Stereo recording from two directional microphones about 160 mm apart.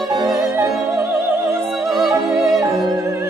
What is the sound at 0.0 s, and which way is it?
Music, 20° right (ahead or behind).